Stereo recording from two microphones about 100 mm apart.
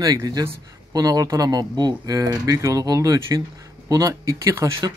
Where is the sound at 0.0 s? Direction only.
35° right (ahead or behind).